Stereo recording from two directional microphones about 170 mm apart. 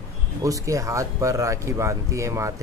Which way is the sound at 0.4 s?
20° right (ahead or behind).